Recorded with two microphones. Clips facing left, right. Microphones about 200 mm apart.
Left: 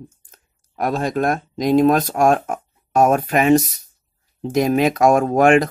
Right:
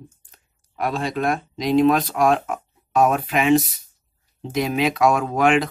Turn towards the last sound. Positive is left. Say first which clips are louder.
# left 5 dB
turn(degrees=45)  # may be behind; listen again after turning